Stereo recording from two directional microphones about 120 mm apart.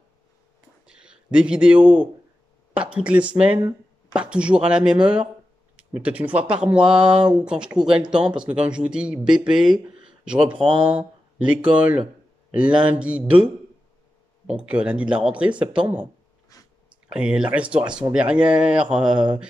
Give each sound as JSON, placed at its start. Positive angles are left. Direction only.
{"t": 0.8, "sound": "speech", "side_deg": -10}
{"t": 16.5, "sound": "a sound", "side_deg": 30}
{"t": 17.1, "sound": "speech", "side_deg": -10}